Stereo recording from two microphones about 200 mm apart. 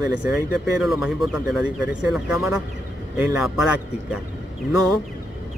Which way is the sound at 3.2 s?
5° right (ahead or behind).